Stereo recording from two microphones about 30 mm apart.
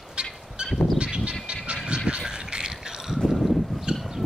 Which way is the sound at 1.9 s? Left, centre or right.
Right.